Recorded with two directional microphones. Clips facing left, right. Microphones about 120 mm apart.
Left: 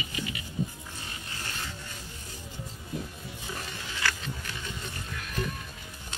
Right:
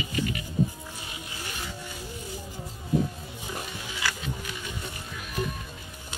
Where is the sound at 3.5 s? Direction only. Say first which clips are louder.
Right 3 dB; 15° right (ahead or behind).